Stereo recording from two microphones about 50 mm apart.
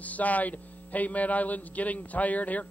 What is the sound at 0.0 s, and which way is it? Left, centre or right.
A man's voice, left.